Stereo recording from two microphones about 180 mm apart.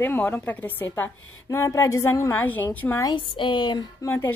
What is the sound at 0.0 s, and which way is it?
A woman's voice, 10° left (ahead or behind).